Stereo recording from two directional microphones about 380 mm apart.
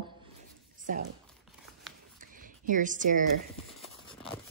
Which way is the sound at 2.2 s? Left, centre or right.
Right.